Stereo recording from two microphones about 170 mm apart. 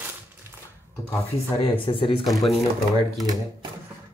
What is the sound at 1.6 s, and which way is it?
Speech, 30° left (ahead or behind).